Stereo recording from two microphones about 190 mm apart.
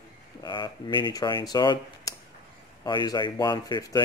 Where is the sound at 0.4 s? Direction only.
20° left (ahead or behind).